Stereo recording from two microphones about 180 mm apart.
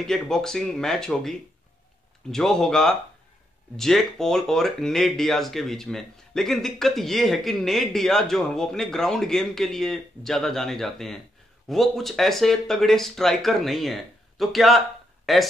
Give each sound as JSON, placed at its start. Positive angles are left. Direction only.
{"t": 0.0, "sound": "speech", "side_deg": 5}
{"t": 2.3, "sound": "speech", "side_deg": 5}